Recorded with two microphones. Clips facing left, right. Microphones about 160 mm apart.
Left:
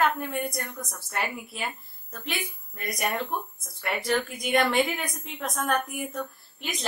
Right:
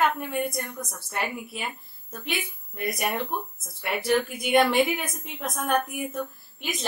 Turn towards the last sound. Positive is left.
turn(degrees=0)  # may be behind; listen again after turning